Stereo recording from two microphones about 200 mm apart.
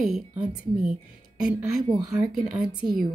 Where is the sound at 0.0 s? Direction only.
Centre (ahead or behind).